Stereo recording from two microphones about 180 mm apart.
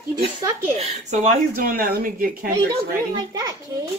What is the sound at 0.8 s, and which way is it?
Speech, 40° right (ahead or behind).